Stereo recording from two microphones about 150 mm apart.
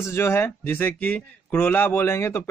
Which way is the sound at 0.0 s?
15° left (ahead or behind).